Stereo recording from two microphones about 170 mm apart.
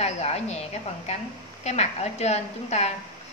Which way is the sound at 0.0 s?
40° left (ahead or behind).